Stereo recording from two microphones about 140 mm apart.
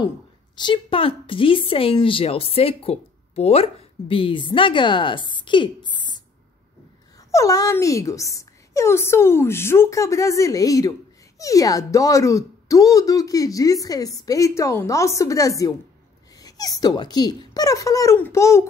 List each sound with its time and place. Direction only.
0.6 s speech: 35° left (ahead or behind)
7.2 s speech: 20° left (ahead or behind)